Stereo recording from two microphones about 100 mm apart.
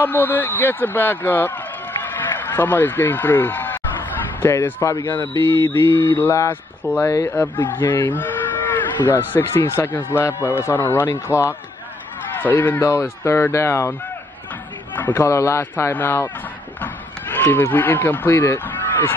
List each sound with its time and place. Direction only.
0.0 s speech: 20° left (ahead or behind)
12.4 s speech: 20° left (ahead or behind)
15.1 s speech: 30° left (ahead or behind)